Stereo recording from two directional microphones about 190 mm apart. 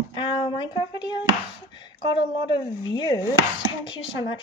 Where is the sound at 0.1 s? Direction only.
25° left (ahead or behind).